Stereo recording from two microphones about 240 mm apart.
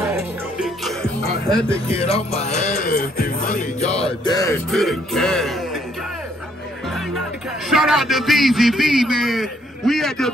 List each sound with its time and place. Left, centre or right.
0.0 s music: centre
1.9 s music: left
4.2 s music: centre
4.6 s speech: centre
7.7 s a man's voice: centre